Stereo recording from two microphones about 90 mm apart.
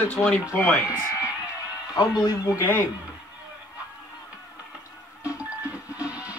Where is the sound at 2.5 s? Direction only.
20° left (ahead or behind).